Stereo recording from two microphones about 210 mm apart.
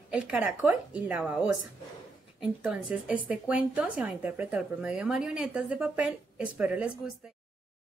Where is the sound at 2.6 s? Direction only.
5° right (ahead or behind).